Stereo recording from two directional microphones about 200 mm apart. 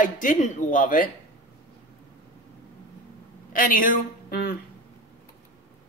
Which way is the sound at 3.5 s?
45° left (ahead or behind).